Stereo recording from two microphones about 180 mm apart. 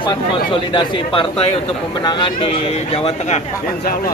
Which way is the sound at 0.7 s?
25° left (ahead or behind).